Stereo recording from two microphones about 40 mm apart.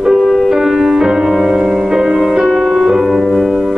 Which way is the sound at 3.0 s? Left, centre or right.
Centre.